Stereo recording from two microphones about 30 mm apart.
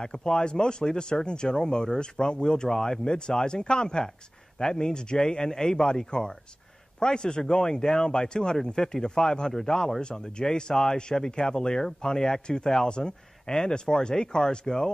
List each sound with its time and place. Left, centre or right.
0.0 s speech: left